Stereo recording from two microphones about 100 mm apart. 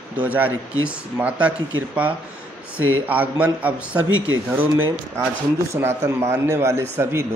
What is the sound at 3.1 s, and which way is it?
A man's voice, 15° right (ahead or behind).